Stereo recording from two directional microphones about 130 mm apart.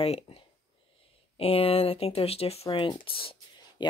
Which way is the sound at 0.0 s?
50° left (ahead or behind).